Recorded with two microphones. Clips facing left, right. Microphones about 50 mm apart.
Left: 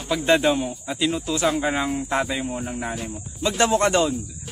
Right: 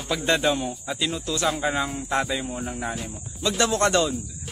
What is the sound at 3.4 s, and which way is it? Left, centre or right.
Speech, left.